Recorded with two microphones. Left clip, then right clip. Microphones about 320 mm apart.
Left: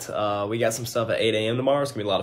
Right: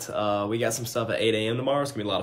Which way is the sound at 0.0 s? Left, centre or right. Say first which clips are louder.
Left 1 dB; centre.